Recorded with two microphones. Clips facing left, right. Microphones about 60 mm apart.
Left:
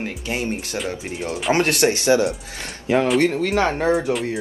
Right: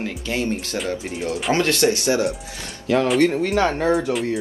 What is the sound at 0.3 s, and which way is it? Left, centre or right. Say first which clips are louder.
Speech: right 1 dB; left.